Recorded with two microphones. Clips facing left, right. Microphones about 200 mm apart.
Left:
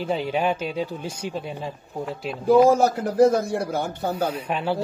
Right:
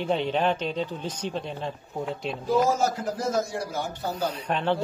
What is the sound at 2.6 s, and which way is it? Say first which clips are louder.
Speech: left 6 dB; 60° left (ahead or behind).